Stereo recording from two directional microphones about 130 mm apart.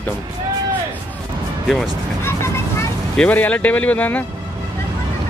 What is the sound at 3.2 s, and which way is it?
Speech, 10° left (ahead or behind).